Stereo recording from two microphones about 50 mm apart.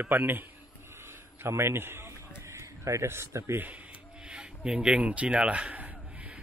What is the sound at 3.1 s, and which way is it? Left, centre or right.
Speech, right.